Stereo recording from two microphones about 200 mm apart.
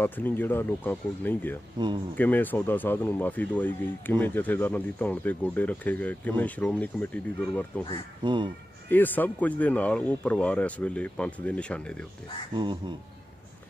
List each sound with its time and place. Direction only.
0.0 s speech: 10° left (ahead or behind)
8.2 s speech: 25° right (ahead or behind)
8.8 s speech: 10° left (ahead or behind)